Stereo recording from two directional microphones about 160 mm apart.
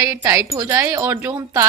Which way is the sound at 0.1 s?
20° right (ahead or behind).